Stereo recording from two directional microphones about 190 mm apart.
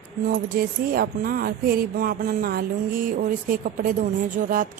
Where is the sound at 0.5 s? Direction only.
50° right (ahead or behind).